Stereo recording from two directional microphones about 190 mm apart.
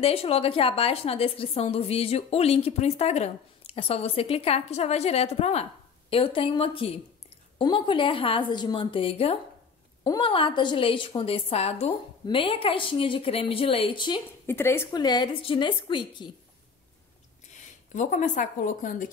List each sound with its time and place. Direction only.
0.0 s a woman's voice: 30° left (ahead or behind)
14.4 s a woman's voice: 10° left (ahead or behind)
17.9 s a woman's voice: 40° left (ahead or behind)